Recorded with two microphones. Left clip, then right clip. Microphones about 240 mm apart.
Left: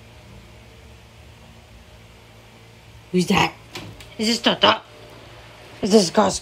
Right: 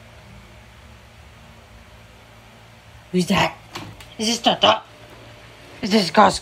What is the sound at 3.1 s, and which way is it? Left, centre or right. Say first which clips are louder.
Speech: left 1 dB; centre.